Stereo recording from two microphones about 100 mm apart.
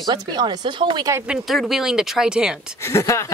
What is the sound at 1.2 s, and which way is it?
Speech, 10° right (ahead or behind).